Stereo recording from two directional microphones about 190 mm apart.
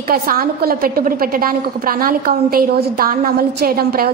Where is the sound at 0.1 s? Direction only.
50° right (ahead or behind).